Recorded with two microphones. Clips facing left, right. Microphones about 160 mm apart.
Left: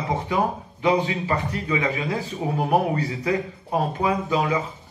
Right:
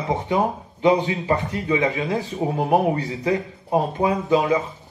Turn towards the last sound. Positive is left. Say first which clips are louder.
# right 4 dB
turn(degrees=-20)  # may be behind; listen again after turning